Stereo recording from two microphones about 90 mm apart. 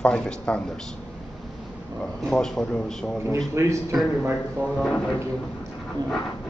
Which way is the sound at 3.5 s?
30° right (ahead or behind).